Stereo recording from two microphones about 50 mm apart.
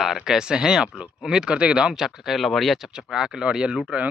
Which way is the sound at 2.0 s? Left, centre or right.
Centre.